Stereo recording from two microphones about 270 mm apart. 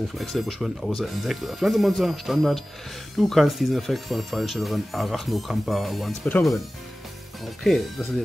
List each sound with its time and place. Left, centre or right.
0.2 s speech: centre
7.6 s speech: centre